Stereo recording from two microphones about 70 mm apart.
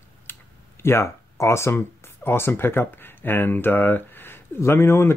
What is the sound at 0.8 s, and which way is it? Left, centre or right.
Speech, left.